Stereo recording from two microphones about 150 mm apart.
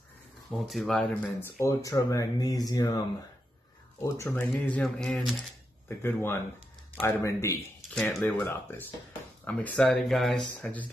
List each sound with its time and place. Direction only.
0.7 s speech: centre (ahead or behind)
1.7 s speech: 20° left (ahead or behind)
4.0 s speech: 20° left (ahead or behind)
4.6 s speech: 5° left (ahead or behind)
5.9 s speech: 15° left (ahead or behind)
7.9 s speech: 5° left (ahead or behind)